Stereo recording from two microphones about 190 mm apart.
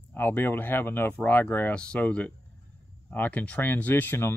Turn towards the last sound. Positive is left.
turn(degrees=10)  # may be behind; listen again after turning